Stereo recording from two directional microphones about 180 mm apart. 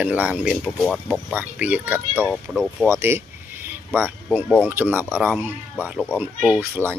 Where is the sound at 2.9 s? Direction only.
15° right (ahead or behind).